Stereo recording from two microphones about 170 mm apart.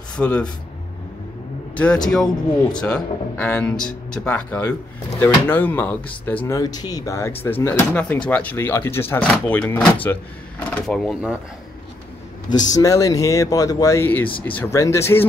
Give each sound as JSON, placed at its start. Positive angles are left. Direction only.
{"t": 0.2, "sound": "speech", "side_deg": 5}
{"t": 2.0, "sound": "speech", "side_deg": 5}
{"t": 12.4, "sound": "speech", "side_deg": 20}